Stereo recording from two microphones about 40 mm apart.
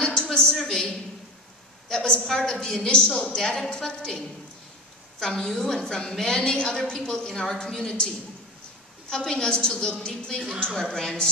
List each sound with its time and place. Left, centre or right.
0.0 s a sound: centre
0.6 s a woman's voice: centre
5.2 s a woman's voice: left
9.1 s a woman's voice: centre